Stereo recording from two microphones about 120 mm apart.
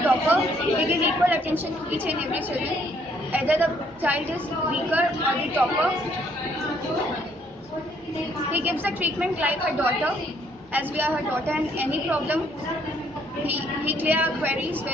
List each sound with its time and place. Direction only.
0.0 s a woman's voice: 20° right (ahead or behind)
3.3 s a woman's voice: 15° right (ahead or behind)
8.5 s a woman's voice: 15° right (ahead or behind)
13.5 s a woman's voice: 15° right (ahead or behind)